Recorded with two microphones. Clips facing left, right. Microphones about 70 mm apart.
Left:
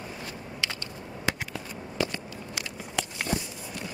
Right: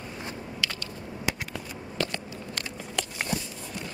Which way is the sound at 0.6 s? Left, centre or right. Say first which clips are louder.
Even; left.